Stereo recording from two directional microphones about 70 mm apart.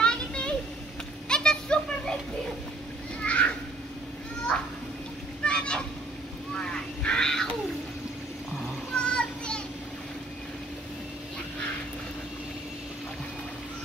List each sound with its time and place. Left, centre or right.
0.0 s a sound: centre
1.3 s children playing: centre
3.3 s cat: centre
5.4 s boat: centre
6.5 s a sound: centre
8.9 s children playing: centre